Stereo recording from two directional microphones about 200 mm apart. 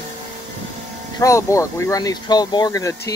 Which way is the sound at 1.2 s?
15° left (ahead or behind).